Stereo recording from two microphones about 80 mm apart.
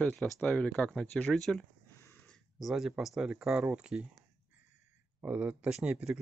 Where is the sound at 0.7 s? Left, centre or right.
Centre.